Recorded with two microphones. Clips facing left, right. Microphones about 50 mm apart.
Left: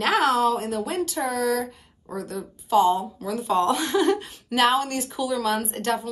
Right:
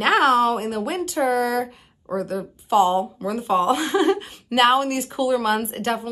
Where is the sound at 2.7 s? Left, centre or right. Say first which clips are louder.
Right 2 dB; right.